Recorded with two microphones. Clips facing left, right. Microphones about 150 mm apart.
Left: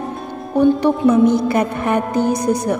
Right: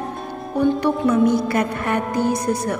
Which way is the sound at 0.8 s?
25° left (ahead or behind).